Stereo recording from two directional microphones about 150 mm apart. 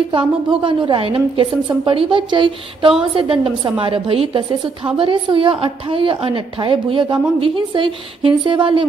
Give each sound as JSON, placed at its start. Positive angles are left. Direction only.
{"t": 0.1, "sound": "a woman's voice", "side_deg": -35}